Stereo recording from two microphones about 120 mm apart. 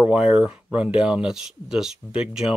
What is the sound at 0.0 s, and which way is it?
Speech, 10° right (ahead or behind).